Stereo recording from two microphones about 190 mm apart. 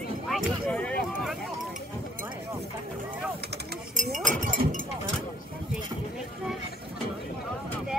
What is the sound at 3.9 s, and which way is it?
Chink, 45° right (ahead or behind).